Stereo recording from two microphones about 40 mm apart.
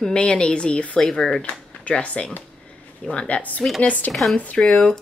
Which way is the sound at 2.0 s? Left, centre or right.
Left.